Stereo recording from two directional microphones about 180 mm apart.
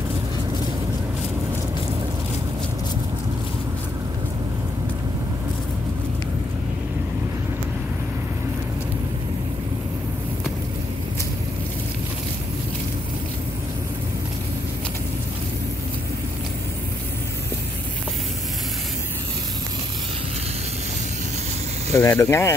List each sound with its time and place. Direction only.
21.9 s speech: 15° left (ahead or behind)